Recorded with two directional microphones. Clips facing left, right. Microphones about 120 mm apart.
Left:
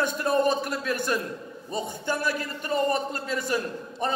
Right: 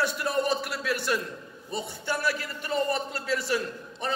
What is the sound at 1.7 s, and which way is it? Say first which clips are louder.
A man's voice: left 2 dB; 45° left (ahead or behind).